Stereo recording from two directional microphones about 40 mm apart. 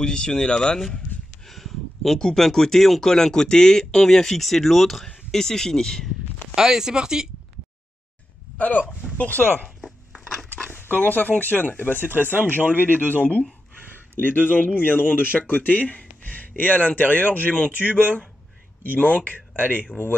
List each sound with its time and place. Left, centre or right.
0.0 s speech: centre
0.7 s speech: centre
1.5 s a sound: centre
2.1 s speech: centre
6.5 s speech: centre
8.5 s speech: left
9.8 s chopping: centre
11.0 s speech: left
12.1 s speech: right
12.9 s speech: left
14.2 s speech: left